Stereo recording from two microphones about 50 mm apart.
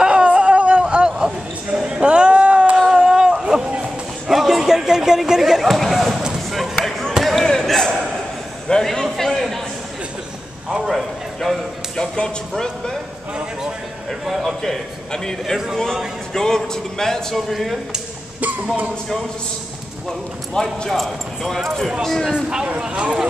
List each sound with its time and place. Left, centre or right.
0.0 s a sound: right; by 6.2 s centre
6.5 s basketball bounce: centre
8.6 s a sound: centre
10.7 s a sound: centre
12.0 s speech: centre
14.6 s speech: centre
15.5 s speech: centre
16.3 s speech: centre
20.5 s speech: centre
20.9 s speech: centre
22.7 s speech: centre